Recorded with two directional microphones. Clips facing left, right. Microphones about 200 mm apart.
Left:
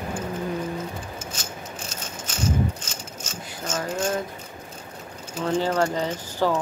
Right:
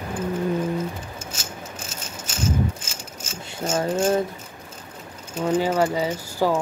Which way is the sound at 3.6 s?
30° right (ahead or behind).